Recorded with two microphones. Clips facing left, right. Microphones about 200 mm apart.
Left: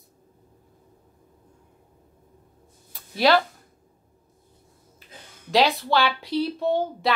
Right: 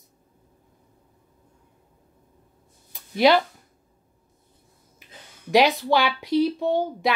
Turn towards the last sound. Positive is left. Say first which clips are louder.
# right 1 dB
turn(degrees=-15)  # may be behind; listen again after turning